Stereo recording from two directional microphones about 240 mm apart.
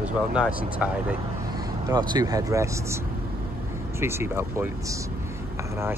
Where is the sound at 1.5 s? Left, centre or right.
Centre.